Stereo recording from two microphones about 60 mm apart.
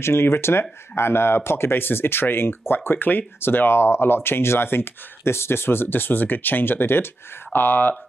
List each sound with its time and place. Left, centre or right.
0.0 s speech: left